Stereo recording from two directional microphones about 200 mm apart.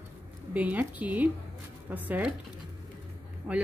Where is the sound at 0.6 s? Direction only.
10° right (ahead or behind).